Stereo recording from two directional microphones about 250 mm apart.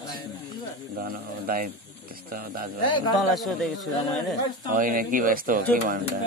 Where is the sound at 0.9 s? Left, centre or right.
Right.